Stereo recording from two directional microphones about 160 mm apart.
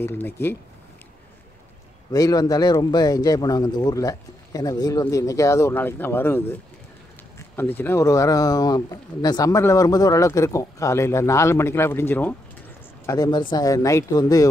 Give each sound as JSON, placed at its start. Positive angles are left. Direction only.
{"t": 0.0, "sound": "speech", "side_deg": 15}
{"t": 2.0, "sound": "speech", "side_deg": 25}